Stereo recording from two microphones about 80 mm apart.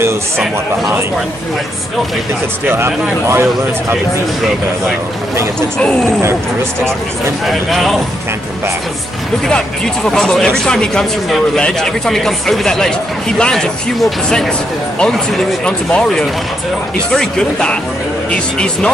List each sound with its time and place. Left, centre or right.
2.7 s speech: right
5.8 s speech: centre
7.4 s speech: centre
10.0 s speech: centre
15.6 s speech: centre